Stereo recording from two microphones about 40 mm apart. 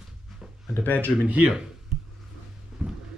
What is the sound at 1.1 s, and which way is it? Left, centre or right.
Speech, right.